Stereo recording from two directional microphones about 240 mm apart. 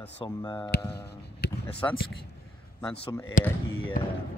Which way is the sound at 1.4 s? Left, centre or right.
Left.